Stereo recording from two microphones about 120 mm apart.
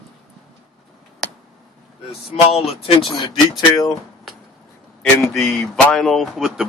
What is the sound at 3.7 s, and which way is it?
Speech, 35° left (ahead or behind).